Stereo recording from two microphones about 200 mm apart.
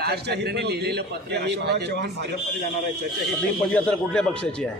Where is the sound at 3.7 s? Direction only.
5° left (ahead or behind).